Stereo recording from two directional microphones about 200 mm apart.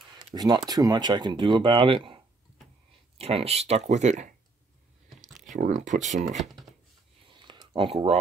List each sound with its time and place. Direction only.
0.3 s speech: 20° right (ahead or behind); by 4.3 s 35° right (ahead or behind)
5.5 s speech: 40° right (ahead or behind)
6.3 s speech: centre (ahead or behind)
7.2 s a sound: 25° right (ahead or behind)